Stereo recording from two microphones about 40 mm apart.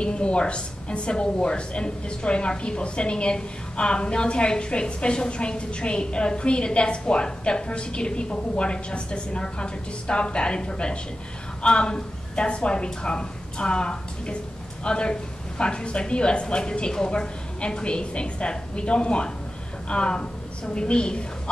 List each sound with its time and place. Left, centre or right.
0.0 s a woman's voice: left